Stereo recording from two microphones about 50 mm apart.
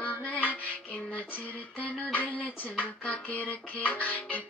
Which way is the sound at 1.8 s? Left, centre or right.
Left.